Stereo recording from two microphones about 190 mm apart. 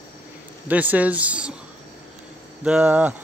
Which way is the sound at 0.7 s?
10° right (ahead or behind).